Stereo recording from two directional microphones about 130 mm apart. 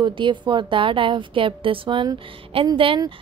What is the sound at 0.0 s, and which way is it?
A woman's voice, 40° right (ahead or behind).